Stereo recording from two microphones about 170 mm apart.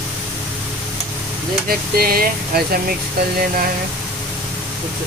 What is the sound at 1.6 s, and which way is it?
Speech, 60° right (ahead or behind).